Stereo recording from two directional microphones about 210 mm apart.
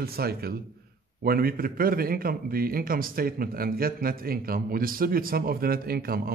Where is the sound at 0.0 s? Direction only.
45° right (ahead or behind).